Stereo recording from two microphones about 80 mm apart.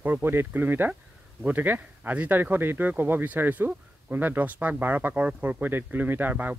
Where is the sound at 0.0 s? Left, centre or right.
Right.